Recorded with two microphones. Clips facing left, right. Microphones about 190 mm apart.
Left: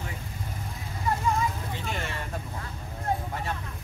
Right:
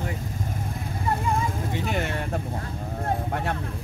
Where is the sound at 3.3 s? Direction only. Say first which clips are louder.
Right 5 dB; 60° right (ahead or behind).